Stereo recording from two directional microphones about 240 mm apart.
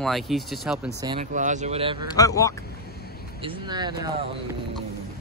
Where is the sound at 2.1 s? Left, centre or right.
Centre.